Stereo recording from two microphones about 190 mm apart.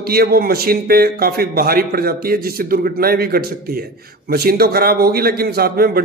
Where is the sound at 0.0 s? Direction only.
55° right (ahead or behind).